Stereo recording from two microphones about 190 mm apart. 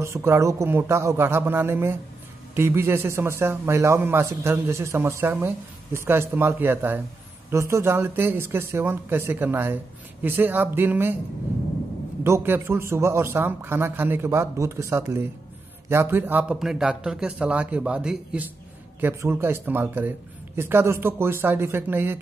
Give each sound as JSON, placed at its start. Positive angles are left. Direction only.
{"t": 0.0, "sound": "speech", "side_deg": -15}
{"t": 12.2, "sound": "a man's voice", "side_deg": -10}